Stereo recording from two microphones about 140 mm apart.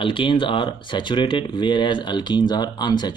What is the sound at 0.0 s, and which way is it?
Speech, 35° left (ahead or behind).